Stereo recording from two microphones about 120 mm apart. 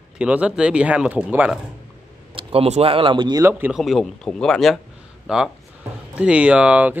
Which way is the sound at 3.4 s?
15° right (ahead or behind).